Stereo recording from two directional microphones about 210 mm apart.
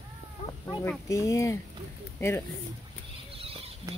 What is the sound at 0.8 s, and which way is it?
Speech, 15° left (ahead or behind).